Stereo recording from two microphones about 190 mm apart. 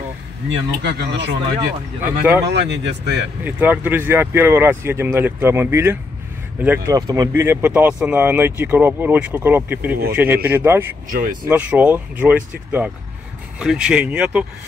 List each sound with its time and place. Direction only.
0.5 s speech: 65° right (ahead or behind)
2.4 s speech: 65° right (ahead or behind)
3.4 s speech: 10° right (ahead or behind)
11.1 s speech: 45° right (ahead or behind)
11.4 s speech: 10° right (ahead or behind)